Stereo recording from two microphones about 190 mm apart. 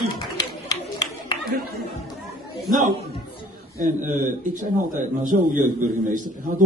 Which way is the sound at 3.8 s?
45° right (ahead or behind).